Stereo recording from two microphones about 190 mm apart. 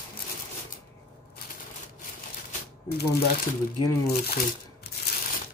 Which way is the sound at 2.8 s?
60° left (ahead or behind).